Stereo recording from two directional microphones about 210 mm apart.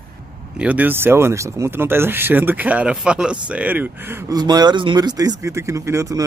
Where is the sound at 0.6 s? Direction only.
5° right (ahead or behind).